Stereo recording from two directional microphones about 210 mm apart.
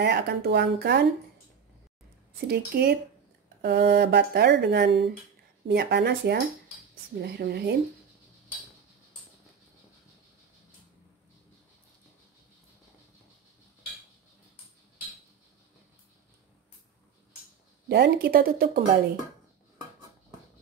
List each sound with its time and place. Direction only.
0.0 s speech: 50° right (ahead or behind)
2.4 s speech: 45° right (ahead or behind)
17.8 s speech: 50° right (ahead or behind)